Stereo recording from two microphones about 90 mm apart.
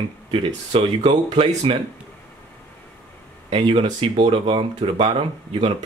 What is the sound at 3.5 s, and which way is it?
Speech, 85° right.